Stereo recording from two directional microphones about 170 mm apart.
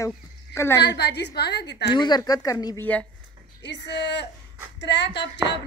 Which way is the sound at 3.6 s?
90° left.